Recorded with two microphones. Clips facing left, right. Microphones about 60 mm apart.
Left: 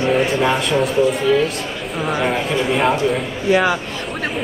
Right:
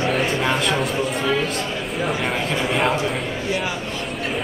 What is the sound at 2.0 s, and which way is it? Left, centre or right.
A man's voice, centre.